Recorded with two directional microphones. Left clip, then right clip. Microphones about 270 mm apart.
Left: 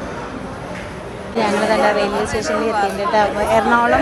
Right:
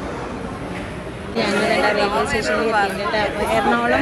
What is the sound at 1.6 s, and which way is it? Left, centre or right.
Speech, left.